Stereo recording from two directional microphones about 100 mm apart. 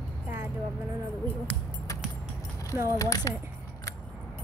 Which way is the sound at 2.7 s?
25° right (ahead or behind).